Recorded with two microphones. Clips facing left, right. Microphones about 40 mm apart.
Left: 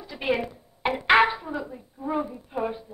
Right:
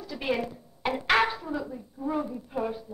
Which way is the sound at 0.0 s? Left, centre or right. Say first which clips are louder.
Left 3 dB; centre.